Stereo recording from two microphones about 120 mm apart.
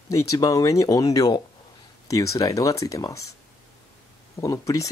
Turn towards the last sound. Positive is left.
turn(degrees=30)  # may be behind; listen again after turning